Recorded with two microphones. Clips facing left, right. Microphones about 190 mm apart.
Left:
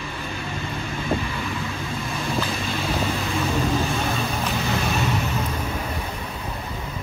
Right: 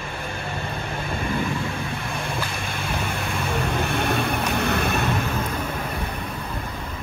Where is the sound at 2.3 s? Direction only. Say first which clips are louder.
Left 3 dB; 55° right (ahead or behind).